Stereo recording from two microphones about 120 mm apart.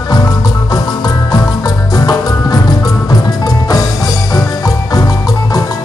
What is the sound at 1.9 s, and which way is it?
Music, 35° left (ahead or behind).